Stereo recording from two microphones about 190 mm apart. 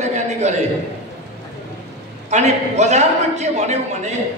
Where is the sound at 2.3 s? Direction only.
35° right (ahead or behind).